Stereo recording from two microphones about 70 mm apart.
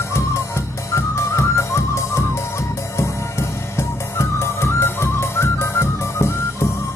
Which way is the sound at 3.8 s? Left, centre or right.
Left.